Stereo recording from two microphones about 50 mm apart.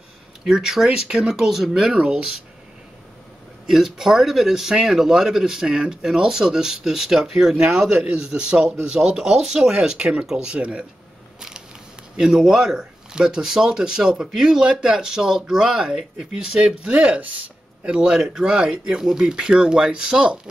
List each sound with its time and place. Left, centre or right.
0.5 s a man's voice: centre
3.6 s a man's voice: centre
12.2 s a man's voice: centre